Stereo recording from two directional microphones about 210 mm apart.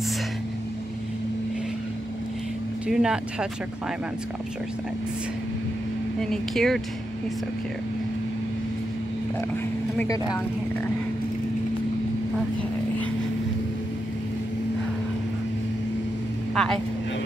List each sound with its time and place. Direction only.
2.9 s speech: 5° right (ahead or behind)
6.2 s speech: centre (ahead or behind)
9.9 s speech: 15° left (ahead or behind)
16.5 s speech: 5° left (ahead or behind)